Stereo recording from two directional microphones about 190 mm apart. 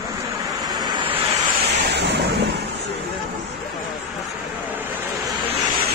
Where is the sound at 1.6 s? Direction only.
60° right (ahead or behind).